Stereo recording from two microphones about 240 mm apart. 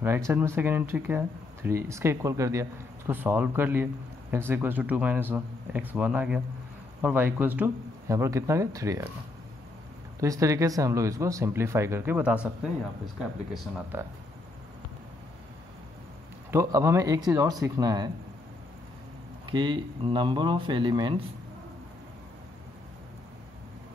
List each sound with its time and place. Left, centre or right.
0.0 s speech: centre
10.2 s speech: centre
16.4 s speech: centre
19.5 s speech: centre